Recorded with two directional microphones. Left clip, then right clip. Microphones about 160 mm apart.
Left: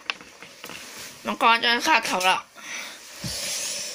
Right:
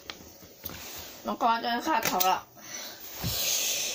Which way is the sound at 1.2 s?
70° left (ahead or behind).